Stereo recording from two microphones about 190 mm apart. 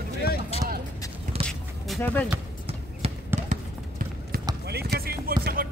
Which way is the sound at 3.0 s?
35° right (ahead or behind).